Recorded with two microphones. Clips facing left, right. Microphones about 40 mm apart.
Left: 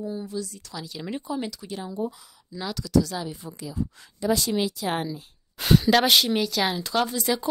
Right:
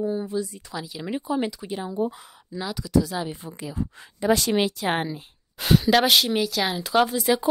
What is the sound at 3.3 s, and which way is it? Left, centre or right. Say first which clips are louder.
Speech: right 2 dB; right.